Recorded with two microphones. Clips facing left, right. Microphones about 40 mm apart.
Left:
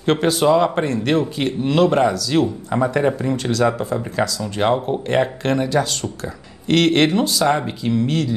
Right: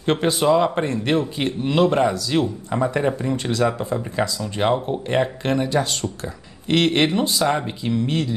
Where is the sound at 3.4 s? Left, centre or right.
Centre.